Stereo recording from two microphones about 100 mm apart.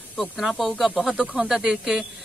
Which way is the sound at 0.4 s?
5° right (ahead or behind).